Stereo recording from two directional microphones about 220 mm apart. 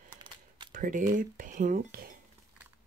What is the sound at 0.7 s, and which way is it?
Speech, 35° right (ahead or behind).